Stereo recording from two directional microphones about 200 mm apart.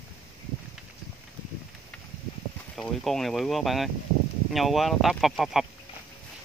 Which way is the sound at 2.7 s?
5° left (ahead or behind).